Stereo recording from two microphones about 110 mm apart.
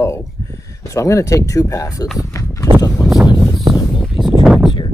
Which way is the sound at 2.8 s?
30° left (ahead or behind).